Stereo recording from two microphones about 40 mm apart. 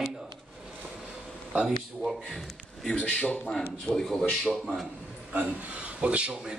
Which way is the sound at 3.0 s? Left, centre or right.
Left.